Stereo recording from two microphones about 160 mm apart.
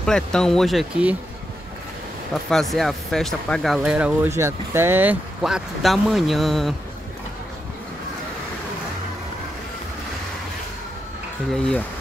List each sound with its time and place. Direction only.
0.0 s speech: 5° left (ahead or behind)
2.5 s speech: centre (ahead or behind)
5.4 s speech: centre (ahead or behind)
11.5 s speech: 5° left (ahead or behind)